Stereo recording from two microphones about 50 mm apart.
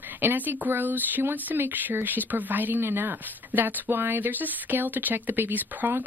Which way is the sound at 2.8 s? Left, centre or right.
Right.